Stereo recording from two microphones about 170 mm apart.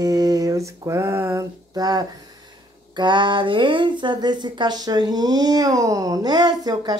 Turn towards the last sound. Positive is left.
turn(degrees=-25)  # may be behind; listen again after turning